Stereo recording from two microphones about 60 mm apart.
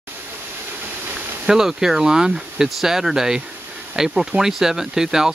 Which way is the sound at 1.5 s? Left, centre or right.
Centre.